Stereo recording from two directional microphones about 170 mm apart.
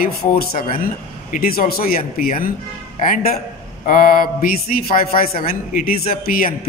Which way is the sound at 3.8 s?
50° left (ahead or behind).